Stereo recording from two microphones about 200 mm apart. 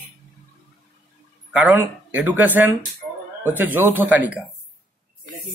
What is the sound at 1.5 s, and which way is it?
Speech, 10° right (ahead or behind).